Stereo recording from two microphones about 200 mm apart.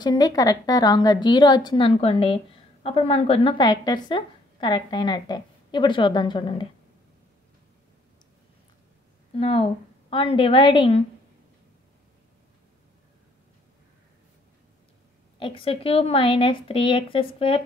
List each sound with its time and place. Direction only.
0.0 s a woman's voice: 20° left (ahead or behind)
9.4 s a woman's voice: 30° left (ahead or behind)
15.3 s a woman's voice: 25° left (ahead or behind)